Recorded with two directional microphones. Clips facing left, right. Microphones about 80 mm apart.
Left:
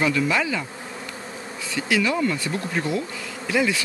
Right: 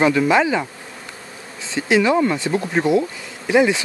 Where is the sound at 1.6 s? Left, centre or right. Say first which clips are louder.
Right 6 dB; right.